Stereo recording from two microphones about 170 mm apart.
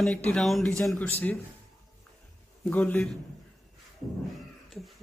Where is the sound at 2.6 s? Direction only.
10° left (ahead or behind).